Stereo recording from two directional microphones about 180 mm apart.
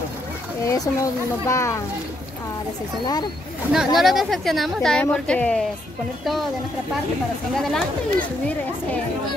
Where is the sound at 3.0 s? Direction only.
25° left (ahead or behind).